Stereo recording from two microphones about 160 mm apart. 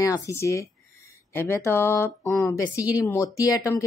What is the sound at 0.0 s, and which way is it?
Speech, 20° left (ahead or behind).